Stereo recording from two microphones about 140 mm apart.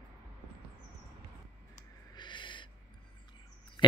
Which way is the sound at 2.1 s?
35° left (ahead or behind).